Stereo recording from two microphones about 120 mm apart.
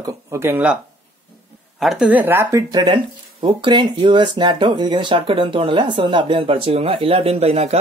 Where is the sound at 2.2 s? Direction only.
20° right (ahead or behind).